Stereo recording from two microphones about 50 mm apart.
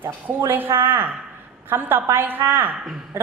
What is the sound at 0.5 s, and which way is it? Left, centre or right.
A woman's voice, right.